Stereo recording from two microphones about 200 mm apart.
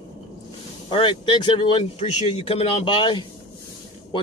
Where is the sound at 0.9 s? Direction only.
25° left (ahead or behind).